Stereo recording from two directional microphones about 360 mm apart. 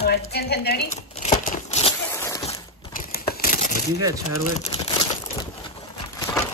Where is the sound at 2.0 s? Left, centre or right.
Centre.